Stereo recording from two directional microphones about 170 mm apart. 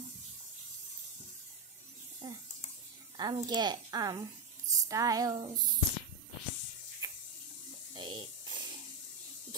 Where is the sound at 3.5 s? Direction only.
25° right (ahead or behind).